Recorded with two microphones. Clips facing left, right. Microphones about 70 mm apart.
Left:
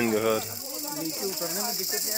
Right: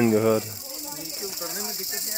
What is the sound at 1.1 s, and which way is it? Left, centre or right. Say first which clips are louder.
Snake: left 3 dB; centre.